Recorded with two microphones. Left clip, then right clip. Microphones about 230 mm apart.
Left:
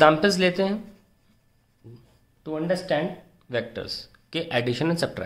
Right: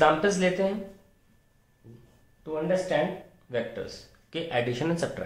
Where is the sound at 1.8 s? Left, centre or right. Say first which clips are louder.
Left 4 dB; left.